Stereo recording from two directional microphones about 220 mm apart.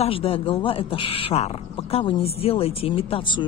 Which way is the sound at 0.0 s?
25° left (ahead or behind).